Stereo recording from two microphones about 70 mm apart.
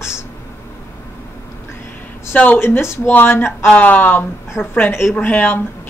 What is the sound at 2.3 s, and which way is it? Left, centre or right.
Speech, left.